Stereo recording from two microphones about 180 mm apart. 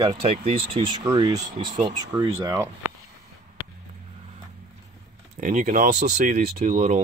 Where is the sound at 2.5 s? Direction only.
15° right (ahead or behind).